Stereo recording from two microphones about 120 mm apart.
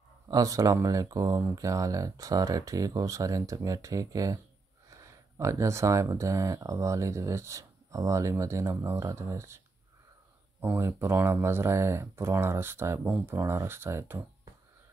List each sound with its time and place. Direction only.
0.3 s speech: 30° right (ahead or behind)
10.6 s speech: 20° right (ahead or behind)